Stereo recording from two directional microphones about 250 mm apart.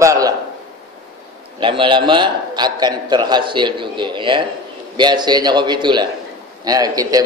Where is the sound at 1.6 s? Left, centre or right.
Centre.